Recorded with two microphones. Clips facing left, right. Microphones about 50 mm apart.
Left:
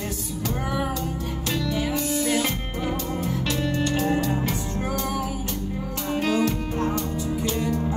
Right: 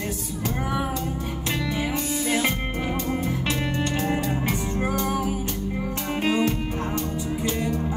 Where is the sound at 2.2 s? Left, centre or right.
Right.